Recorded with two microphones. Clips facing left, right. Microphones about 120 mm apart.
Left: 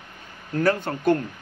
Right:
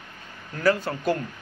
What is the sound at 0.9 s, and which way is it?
Speech, 45° left (ahead or behind).